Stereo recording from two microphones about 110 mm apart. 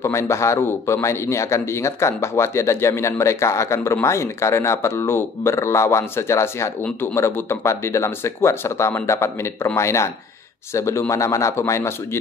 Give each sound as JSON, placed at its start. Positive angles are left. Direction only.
{"t": 0.0, "sound": "a man's voice", "side_deg": 25}